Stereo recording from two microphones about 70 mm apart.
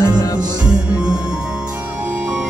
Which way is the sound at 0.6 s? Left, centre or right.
Centre.